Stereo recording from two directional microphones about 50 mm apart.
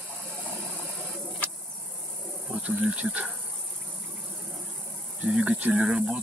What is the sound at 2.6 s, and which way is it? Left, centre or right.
Speech, right.